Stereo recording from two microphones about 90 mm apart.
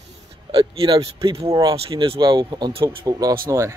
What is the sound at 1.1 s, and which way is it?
Speech, 90° right.